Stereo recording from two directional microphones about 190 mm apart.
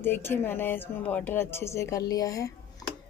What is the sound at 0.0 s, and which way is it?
Speech, 10° left (ahead or behind).